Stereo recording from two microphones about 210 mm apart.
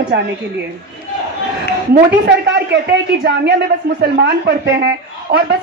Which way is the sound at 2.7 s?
50° right (ahead or behind).